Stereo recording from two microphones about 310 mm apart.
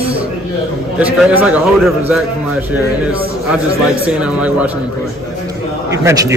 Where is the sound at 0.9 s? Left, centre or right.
Centre.